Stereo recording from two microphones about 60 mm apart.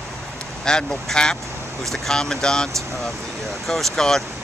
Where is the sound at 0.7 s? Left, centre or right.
Centre.